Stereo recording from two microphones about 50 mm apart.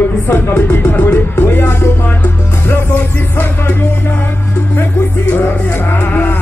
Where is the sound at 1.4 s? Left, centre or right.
Left.